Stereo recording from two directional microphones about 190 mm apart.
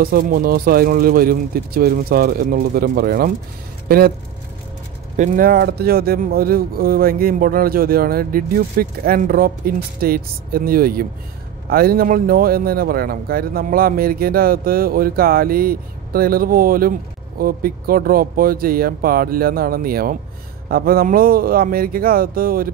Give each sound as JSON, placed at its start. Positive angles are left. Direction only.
{"t": 0.0, "sound": "speech", "side_deg": -50}
{"t": 5.1, "sound": "speech", "side_deg": -40}